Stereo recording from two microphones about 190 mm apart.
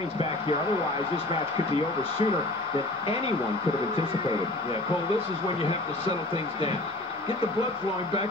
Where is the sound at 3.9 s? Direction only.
30° left (ahead or behind).